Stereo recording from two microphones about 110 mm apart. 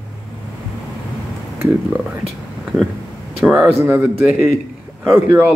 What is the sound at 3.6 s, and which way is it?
Speech, 20° right (ahead or behind).